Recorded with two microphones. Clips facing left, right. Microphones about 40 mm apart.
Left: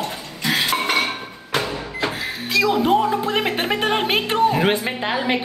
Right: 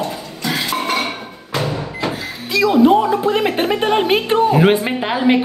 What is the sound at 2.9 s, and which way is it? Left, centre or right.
Speech, right.